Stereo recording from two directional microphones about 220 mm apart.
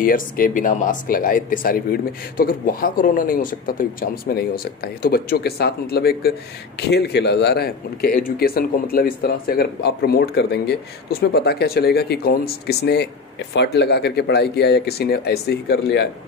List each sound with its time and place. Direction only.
0.0 s speech: 40° left (ahead or behind)